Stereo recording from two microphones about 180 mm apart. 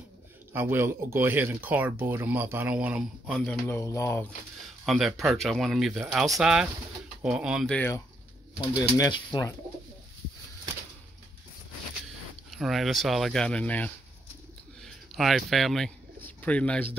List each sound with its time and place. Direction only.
0.5 s speech: 10° right (ahead or behind)
3.3 s speech: 10° left (ahead or behind)
4.8 s speech: centre (ahead or behind)
7.7 s speech: 10° left (ahead or behind)
12.4 s speech: centre (ahead or behind)